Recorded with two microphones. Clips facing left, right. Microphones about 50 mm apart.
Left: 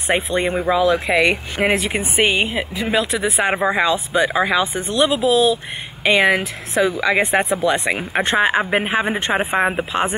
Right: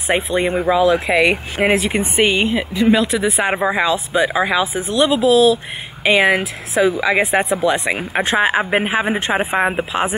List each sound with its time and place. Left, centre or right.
0.0 s speech: centre